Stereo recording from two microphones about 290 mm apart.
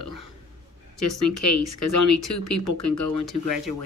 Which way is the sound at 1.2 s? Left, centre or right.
Left.